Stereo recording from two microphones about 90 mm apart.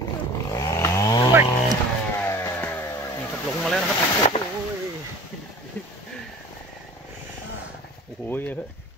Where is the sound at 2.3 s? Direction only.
35° left (ahead or behind).